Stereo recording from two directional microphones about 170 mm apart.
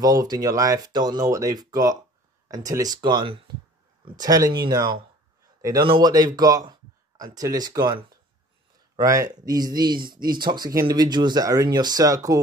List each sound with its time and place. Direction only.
0.0 s a man's voice: 20° right (ahead or behind)